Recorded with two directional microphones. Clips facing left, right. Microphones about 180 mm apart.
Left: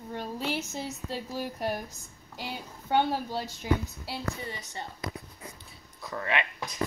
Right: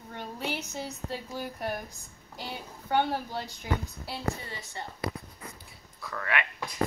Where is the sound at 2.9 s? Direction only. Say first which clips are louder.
Left 1 dB; 25° left (ahead or behind).